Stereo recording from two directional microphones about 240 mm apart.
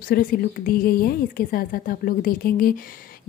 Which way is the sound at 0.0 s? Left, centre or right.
Left.